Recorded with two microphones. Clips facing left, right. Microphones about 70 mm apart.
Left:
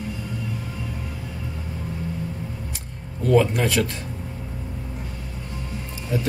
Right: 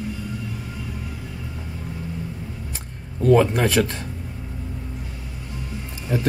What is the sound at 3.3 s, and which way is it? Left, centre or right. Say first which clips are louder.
Speech: right 1 dB; right.